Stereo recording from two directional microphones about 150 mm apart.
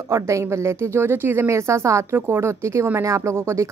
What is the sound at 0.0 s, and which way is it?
Speech, 20° right (ahead or behind).